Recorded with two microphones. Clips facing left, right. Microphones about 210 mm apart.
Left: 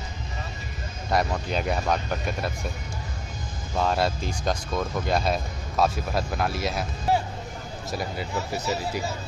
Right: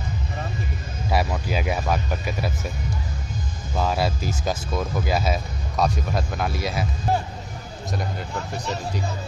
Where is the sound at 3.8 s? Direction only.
Centre (ahead or behind).